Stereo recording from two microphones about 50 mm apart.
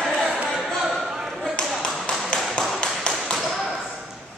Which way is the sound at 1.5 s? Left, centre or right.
Centre.